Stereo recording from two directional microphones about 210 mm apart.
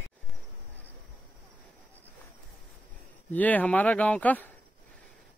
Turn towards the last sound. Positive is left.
turn(degrees=5)  # may be behind; listen again after turning